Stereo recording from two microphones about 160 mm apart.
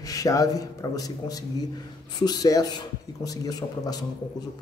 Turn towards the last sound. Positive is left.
turn(degrees=25)  # may be behind; listen again after turning